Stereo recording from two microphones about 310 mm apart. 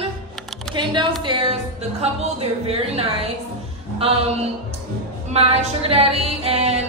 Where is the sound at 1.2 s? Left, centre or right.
Centre.